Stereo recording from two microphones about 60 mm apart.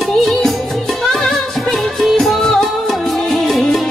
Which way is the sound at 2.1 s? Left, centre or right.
Centre.